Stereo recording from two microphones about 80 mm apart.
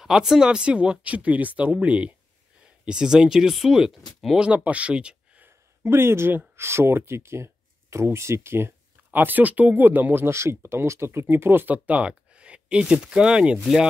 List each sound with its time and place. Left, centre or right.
0.0 s speech: centre
4.6 s speech: centre
5.9 s speech: right; by 13.8 s centre